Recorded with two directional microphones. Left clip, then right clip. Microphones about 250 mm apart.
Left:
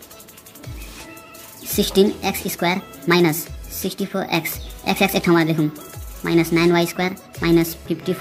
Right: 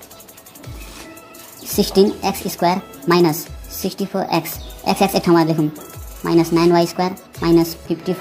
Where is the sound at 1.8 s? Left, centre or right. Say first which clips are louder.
Right 2 dB; centre.